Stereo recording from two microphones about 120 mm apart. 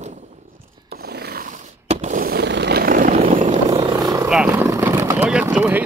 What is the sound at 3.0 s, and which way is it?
Vehicle, 90° right.